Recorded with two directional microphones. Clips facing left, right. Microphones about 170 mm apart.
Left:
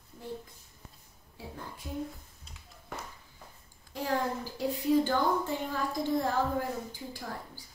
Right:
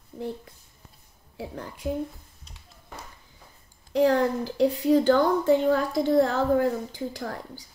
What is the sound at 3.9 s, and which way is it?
A woman's voice, 75° right (ahead or behind).